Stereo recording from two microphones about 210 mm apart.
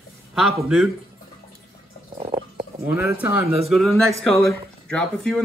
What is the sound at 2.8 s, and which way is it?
Speech, 10° right (ahead or behind).